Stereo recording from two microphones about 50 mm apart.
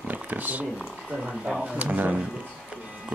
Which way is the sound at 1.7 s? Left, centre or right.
Right.